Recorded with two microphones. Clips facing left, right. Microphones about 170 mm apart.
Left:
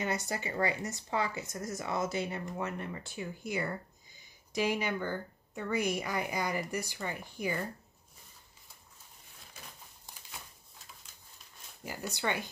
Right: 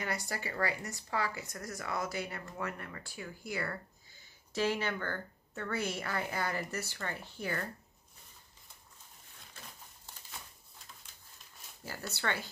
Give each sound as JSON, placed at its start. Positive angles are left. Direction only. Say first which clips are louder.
{"t": 0.0, "sound": "a woman's voice", "louder": "left 4 dB", "side_deg": 20}
{"t": 11.8, "sound": "speech", "louder": "left 3 dB", "side_deg": 15}